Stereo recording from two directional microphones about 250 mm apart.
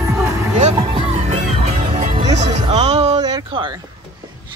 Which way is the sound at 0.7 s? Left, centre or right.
Right.